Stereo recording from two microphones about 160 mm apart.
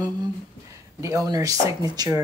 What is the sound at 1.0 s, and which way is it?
Speech, 20° right (ahead or behind).